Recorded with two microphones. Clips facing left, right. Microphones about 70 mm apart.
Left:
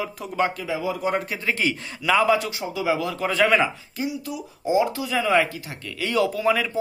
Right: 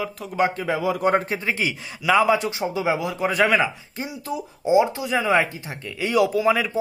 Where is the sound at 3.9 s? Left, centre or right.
Right.